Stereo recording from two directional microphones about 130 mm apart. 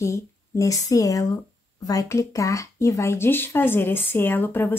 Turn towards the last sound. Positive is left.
turn(degrees=15)  # may be behind; listen again after turning